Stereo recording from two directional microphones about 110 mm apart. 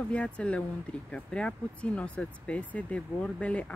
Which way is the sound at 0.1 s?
10° left (ahead or behind).